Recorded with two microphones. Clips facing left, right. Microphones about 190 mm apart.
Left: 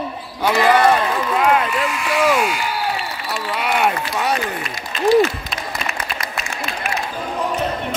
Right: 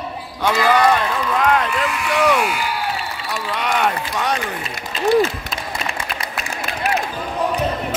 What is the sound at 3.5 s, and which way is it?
Speech, 10° left (ahead or behind).